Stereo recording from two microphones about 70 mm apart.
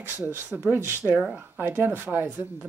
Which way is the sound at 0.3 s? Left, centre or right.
Right.